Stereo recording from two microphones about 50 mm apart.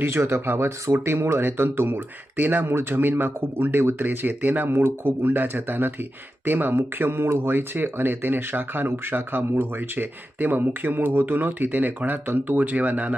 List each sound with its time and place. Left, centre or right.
0.0 s speech: right
2.6 s speech: right